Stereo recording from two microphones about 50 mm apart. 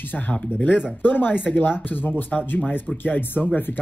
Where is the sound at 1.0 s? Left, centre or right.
Left.